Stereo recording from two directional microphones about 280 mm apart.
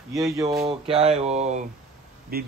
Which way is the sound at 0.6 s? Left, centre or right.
Right.